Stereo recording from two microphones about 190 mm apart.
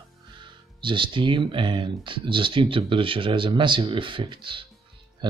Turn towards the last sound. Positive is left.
turn(degrees=-25)  # may be behind; listen again after turning